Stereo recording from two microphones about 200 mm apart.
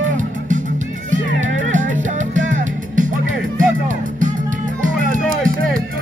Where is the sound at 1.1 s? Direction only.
40° right (ahead or behind).